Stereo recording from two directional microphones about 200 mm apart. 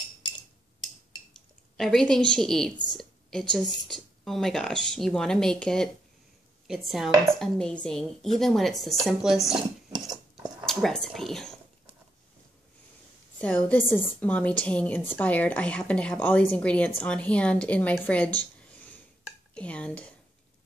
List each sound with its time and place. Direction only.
1.3 s speech: centre (ahead or behind)
9.9 s cutlery: 20° right (ahead or behind)
10.6 s speech: centre (ahead or behind)
13.7 s a woman's voice: 10° left (ahead or behind)
19.2 s dishes: 5° left (ahead or behind)